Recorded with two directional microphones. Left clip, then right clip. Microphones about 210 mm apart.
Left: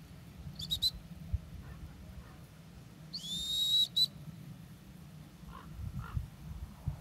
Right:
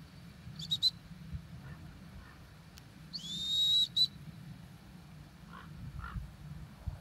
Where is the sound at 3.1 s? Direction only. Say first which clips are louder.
Right 2 dB; 50° left (ahead or behind).